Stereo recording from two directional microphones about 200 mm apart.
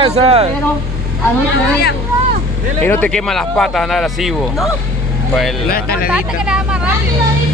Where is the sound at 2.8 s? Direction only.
5° left (ahead or behind).